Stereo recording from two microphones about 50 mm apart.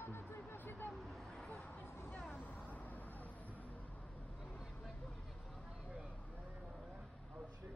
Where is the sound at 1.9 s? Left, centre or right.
Left.